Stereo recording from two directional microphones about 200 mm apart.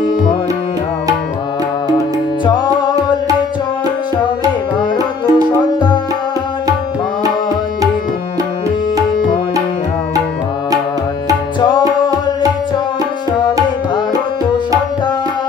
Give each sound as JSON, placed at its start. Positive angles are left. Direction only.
{"t": 2.4, "sound": "music", "side_deg": 20}
{"t": 5.2, "sound": "music", "side_deg": 20}